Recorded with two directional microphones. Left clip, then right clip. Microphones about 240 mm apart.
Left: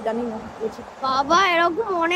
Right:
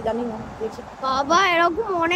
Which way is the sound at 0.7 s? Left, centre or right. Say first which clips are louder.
Left 1 dB; centre.